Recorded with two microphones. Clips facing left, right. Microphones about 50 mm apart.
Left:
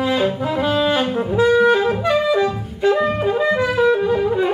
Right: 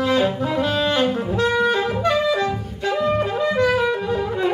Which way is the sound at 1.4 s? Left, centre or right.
Centre.